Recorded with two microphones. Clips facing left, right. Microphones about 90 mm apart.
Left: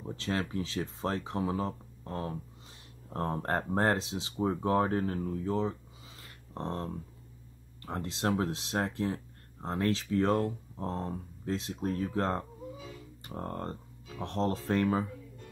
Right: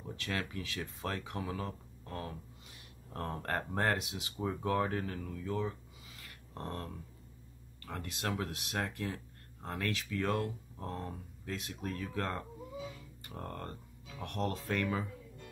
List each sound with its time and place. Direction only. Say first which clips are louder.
0.0 s speech: left 5 dB; 30° left (ahead or behind)
13.2 s music: left 6 dB; 25° left (ahead or behind)
14.2 s speech: left 5 dB; 30° left (ahead or behind)